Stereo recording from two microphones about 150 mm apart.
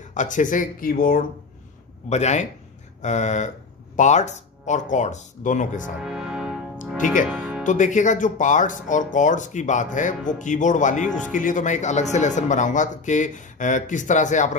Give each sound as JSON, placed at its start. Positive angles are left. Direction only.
{"t": 0.1, "sound": "speech", "side_deg": 55}
{"t": 2.0, "sound": "speech", "side_deg": 50}
{"t": 5.9, "sound": "music", "side_deg": -5}
{"t": 7.6, "sound": "speech", "side_deg": 55}